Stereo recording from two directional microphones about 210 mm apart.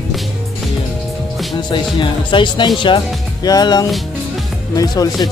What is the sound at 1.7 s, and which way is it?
Speech, 25° left (ahead or behind).